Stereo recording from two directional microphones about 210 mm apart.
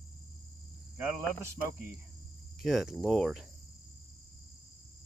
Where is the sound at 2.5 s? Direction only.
Centre (ahead or behind).